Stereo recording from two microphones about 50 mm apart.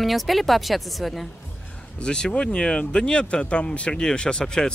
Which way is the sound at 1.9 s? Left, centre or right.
Centre.